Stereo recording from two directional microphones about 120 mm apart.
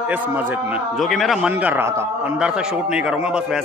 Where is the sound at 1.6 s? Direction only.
15° right (ahead or behind).